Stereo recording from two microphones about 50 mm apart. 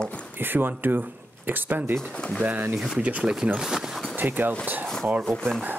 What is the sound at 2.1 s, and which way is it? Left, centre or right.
Speech, left.